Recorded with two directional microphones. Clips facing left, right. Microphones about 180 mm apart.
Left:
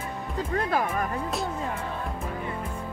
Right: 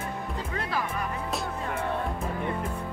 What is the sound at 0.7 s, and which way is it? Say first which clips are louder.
Music: left 3 dB; 50° left (ahead or behind).